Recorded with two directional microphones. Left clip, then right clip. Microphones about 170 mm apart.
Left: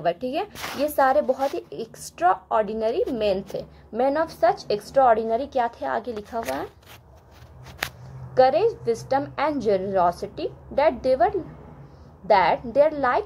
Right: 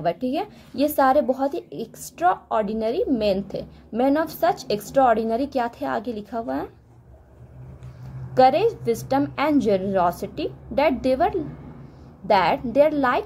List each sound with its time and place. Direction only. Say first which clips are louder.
0.0 s speech: even; 15° right (ahead or behind)
8.4 s speech: right 1 dB; 15° right (ahead or behind)